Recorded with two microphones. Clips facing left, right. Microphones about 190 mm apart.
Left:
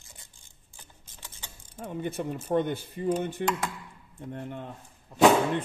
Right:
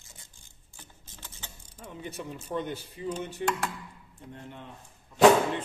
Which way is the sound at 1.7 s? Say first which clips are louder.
Left 7 dB; 55° left (ahead or behind).